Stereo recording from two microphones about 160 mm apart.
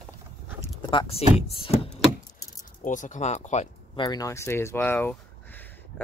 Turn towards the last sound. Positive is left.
turn(degrees=10)  # may be behind; listen again after turning